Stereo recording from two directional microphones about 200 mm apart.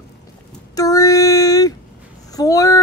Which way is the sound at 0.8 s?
15° left (ahead or behind).